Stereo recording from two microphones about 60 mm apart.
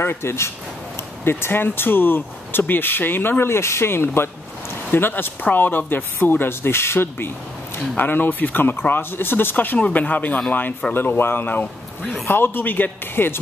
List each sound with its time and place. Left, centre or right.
0.0 s speech: left
12.0 s a man's voice: centre
12.3 s speech: left